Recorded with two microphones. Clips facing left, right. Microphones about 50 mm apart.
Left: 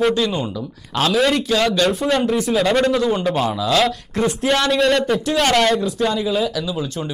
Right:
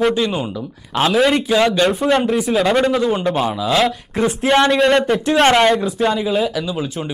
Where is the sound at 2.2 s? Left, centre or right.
Centre; by 4.7 s right.